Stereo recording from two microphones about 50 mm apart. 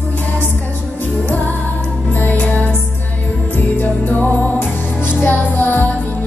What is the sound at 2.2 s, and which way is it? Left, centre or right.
Music, left.